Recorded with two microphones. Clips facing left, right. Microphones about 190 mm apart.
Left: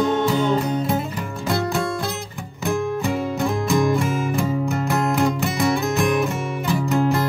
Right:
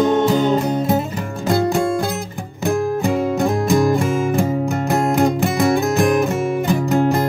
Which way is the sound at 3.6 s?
45° right (ahead or behind).